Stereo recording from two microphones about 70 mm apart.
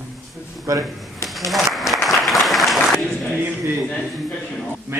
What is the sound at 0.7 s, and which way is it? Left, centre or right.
Speech, right.